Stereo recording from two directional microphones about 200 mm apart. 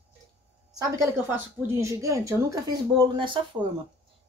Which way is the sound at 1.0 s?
10° right (ahead or behind).